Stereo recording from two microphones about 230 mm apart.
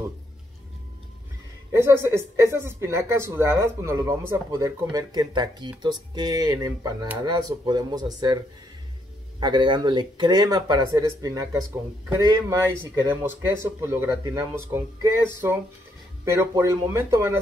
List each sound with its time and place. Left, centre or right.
1.7 s speech: centre
9.4 s speech: centre